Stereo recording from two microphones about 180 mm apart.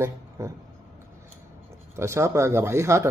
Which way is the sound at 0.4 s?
15° right (ahead or behind).